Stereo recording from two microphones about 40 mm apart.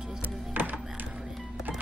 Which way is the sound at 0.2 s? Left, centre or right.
Right.